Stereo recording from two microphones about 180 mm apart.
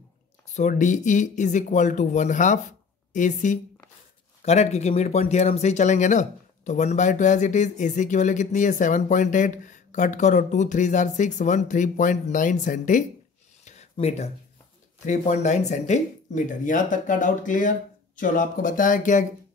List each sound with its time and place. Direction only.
0.6 s speech: 45° left (ahead or behind)
13.7 s a sound: 35° left (ahead or behind)
15.0 s speech: 40° left (ahead or behind)